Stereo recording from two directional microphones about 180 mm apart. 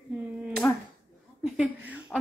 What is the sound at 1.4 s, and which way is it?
Speech, 5° right (ahead or behind).